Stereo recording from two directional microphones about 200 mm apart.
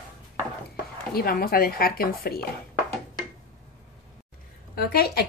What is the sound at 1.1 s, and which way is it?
Speech, 50° left (ahead or behind).